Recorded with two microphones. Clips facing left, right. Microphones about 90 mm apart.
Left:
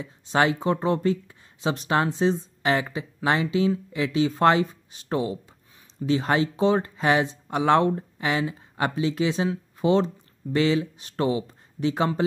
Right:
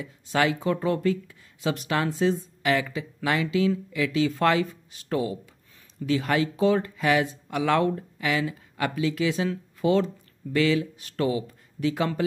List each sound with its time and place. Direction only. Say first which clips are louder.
0.0 s speech: left 2 dB; 25° left (ahead or behind)